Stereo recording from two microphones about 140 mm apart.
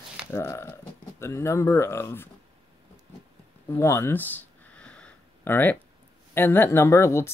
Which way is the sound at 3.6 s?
20° left (ahead or behind).